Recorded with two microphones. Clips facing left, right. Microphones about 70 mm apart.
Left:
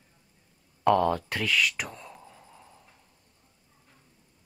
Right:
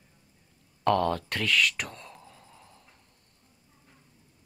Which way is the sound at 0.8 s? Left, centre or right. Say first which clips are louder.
Left 2 dB; centre.